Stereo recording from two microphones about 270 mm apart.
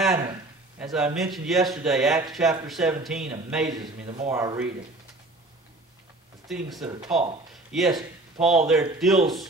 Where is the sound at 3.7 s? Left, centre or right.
Centre.